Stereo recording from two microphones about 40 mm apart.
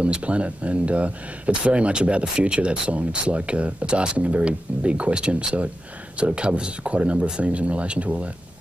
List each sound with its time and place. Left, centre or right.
0.0 s speech: right